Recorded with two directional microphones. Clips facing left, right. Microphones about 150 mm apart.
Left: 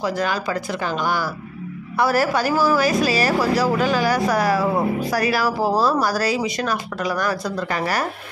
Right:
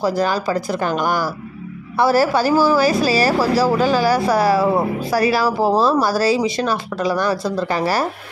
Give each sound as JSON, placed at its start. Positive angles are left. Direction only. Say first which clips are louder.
{"t": 0.0, "sound": "speech", "louder": "right 4 dB", "side_deg": -35}
{"t": 2.0, "sound": "speech", "louder": "right 4 dB", "side_deg": -30}